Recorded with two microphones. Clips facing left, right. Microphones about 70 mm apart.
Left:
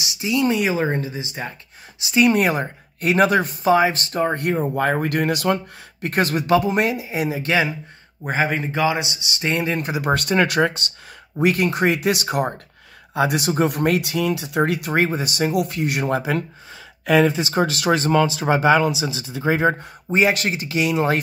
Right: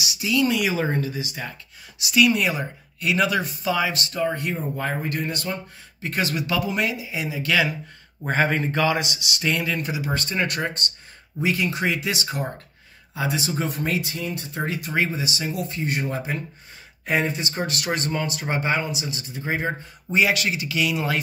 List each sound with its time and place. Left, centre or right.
0.0 s speech: left
2.3 s speech: left
6.0 s speech: left
8.2 s speech: centre
8.9 s speech: left
10.0 s speech: left
11.3 s speech: left
18.7 s speech: left
20.1 s speech: left